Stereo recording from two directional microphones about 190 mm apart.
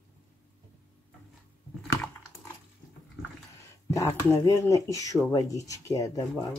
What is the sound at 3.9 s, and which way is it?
Speech, 15° left (ahead or behind).